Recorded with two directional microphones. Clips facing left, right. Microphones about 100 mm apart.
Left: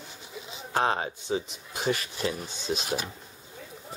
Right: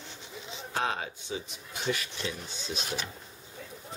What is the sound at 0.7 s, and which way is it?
Speech, 40° left (ahead or behind).